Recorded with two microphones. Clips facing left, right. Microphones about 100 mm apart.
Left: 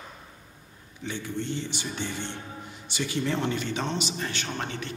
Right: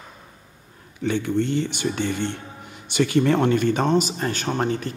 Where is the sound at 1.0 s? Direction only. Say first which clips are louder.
Right 11 dB; 60° right (ahead or behind).